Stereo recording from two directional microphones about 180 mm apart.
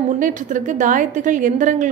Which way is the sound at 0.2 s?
45° right (ahead or behind).